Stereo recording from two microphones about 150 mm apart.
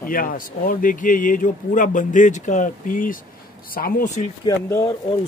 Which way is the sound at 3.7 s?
75° left (ahead or behind).